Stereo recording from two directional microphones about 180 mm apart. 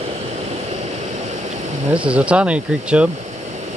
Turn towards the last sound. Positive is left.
turn(degrees=-5)  # may be behind; listen again after turning